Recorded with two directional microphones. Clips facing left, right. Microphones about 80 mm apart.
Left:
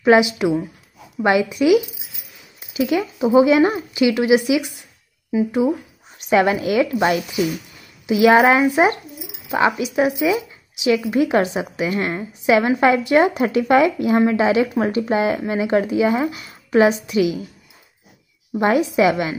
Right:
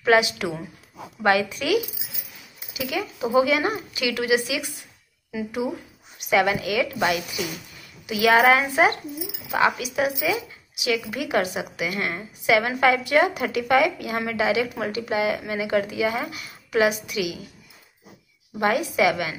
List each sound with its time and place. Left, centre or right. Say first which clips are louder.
0.0 s speech: left 5 dB; left
18.6 s speech: left 5 dB; left